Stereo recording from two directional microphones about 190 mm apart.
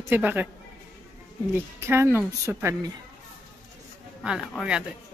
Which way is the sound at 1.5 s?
10° right (ahead or behind).